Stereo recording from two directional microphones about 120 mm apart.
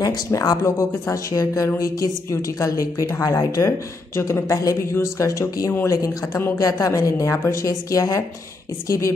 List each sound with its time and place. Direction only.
0.0 s speech: 30° left (ahead or behind)